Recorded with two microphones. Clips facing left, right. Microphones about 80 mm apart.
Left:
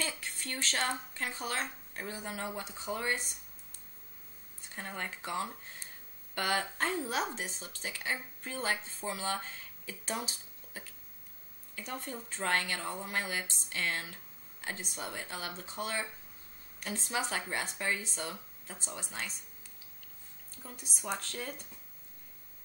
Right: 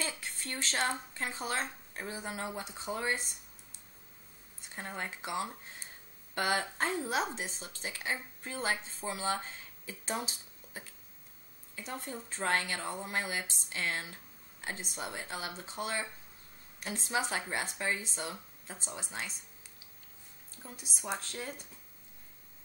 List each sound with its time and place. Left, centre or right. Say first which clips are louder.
0.2 s a woman's voice: left 1 dB; right
4.7 s a woman's voice: even; centre
20.6 s a woman's voice: left 1 dB; right